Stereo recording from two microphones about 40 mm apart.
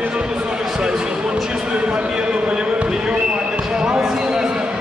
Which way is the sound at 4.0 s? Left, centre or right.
Centre.